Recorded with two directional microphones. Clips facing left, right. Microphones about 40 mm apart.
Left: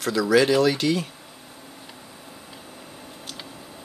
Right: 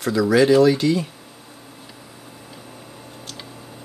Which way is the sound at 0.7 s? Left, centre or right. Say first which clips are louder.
Right 4 dB; left.